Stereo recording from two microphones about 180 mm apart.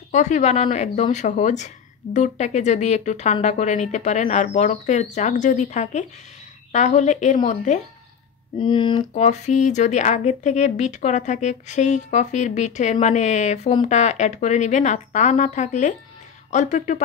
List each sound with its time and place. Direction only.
0.1 s speech: 40° left (ahead or behind)
8.5 s speech: 25° left (ahead or behind)
9.1 s speech: 40° left (ahead or behind)